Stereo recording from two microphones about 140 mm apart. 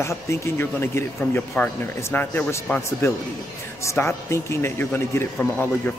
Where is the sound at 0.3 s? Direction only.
20° left (ahead or behind).